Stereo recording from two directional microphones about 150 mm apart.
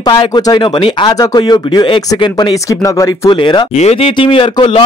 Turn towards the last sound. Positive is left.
turn(degrees=35)  # may be behind; listen again after turning